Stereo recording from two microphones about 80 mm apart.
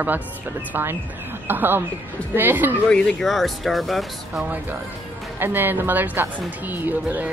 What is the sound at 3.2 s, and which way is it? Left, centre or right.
Speech, centre.